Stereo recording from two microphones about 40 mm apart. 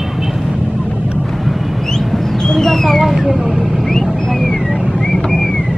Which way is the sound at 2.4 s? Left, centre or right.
Centre.